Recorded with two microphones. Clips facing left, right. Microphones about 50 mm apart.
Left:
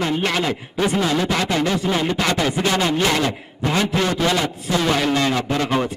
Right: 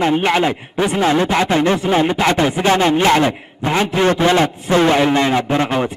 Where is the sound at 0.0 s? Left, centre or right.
Right.